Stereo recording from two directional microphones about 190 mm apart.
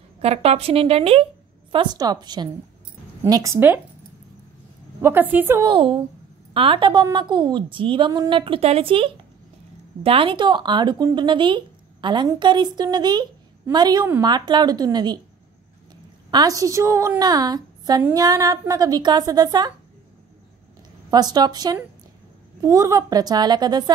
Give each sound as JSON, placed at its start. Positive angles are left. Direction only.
{"t": 0.2, "sound": "a woman's voice", "side_deg": -35}
{"t": 5.0, "sound": "a woman's voice", "side_deg": -10}
{"t": 5.7, "sound": "speech", "side_deg": -30}
{"t": 16.3, "sound": "speech", "side_deg": -20}
{"t": 21.1, "sound": "speech", "side_deg": -20}